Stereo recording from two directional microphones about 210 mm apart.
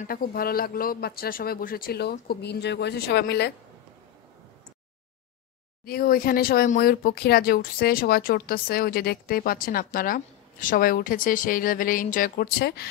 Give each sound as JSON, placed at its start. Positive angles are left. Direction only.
{"t": 0.0, "sound": "speech", "side_deg": 45}
{"t": 5.9, "sound": "speech", "side_deg": 45}